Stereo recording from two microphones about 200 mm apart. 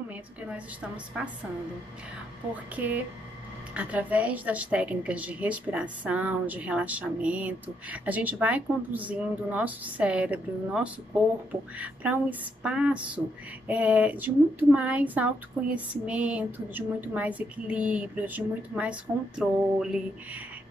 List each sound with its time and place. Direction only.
0.1 s a woman's voice: 5° right (ahead or behind)
2.5 s a woman's voice: 5° right (ahead or behind)